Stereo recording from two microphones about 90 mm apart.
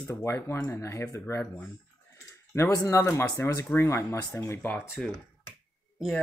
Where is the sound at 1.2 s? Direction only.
20° left (ahead or behind).